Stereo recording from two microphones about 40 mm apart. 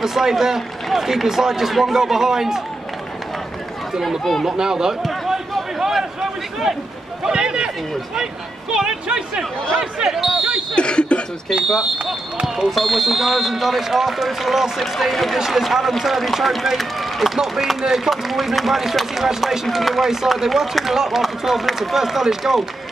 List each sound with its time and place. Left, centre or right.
0.0 s speech: centre
4.2 s speech: centre
4.5 s speech: centre
5.3 s a sound: centre
7.3 s run: right
8.7 s speech: centre
10.7 s a sound: left
11.5 s speech: centre
17.8 s speech: centre